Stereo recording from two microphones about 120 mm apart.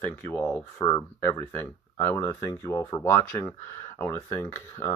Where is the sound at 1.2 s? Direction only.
20° left (ahead or behind).